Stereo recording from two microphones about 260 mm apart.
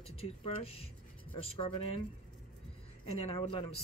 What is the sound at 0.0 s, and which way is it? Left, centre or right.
Speech, left.